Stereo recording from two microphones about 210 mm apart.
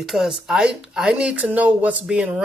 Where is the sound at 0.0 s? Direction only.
Centre (ahead or behind).